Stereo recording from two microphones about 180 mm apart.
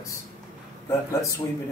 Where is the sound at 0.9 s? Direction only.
15° left (ahead or behind).